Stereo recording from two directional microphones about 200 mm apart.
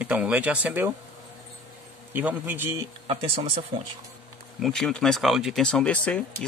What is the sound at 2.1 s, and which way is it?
Speech, 10° right (ahead or behind).